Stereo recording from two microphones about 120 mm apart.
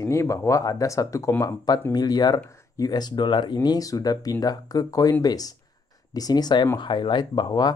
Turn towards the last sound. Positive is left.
turn(degrees=40)  # may be behind; listen again after turning